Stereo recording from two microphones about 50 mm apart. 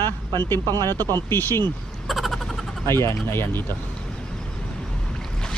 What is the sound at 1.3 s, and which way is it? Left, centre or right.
Speech, left.